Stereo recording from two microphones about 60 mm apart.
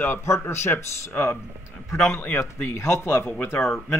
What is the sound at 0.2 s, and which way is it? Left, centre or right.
Speech, left.